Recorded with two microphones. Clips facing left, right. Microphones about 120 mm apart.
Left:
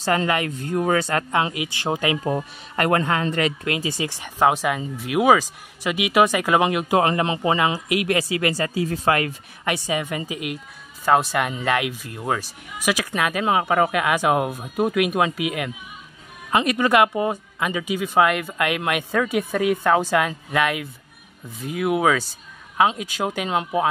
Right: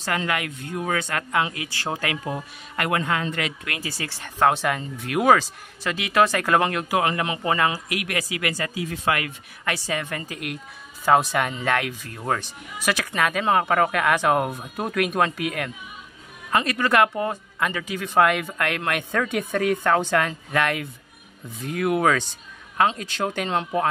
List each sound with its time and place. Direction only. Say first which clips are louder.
0.0 s speech: left 5 dB; 30° left (ahead or behind)
1.5 s speech: left 4 dB; 20° left (ahead or behind)
2.2 s speech: left 6 dB; 40° left (ahead or behind)
3.6 s speech: left 7 dB; 20° left (ahead or behind)
6.9 s speech: left 4 dB; 30° left (ahead or behind)
7.5 s speech: left 3 dB; 15° left (ahead or behind); by 9.3 s 35° left (ahead or behind)
9.7 s speech: left 3 dB; 15° left (ahead or behind)